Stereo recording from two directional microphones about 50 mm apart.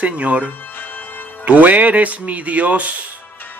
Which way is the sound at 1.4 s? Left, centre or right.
Right.